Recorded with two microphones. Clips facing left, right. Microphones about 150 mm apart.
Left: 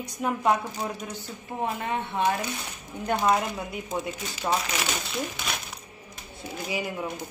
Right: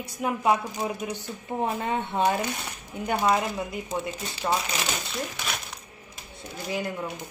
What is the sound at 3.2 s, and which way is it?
Speech, centre (ahead or behind).